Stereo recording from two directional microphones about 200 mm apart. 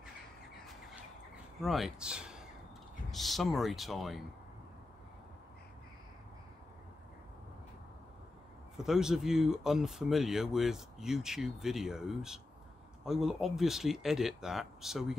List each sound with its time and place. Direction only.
1.6 s speech: centre (ahead or behind)
8.7 s speech: centre (ahead or behind)